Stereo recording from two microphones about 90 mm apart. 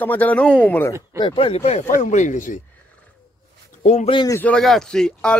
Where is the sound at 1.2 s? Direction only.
75° left (ahead or behind).